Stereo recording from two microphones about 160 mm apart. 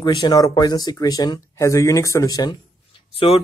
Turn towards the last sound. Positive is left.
turn(degrees=35)  # may be behind; listen again after turning